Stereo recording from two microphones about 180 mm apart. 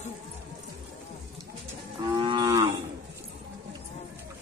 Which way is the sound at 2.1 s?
25° right (ahead or behind).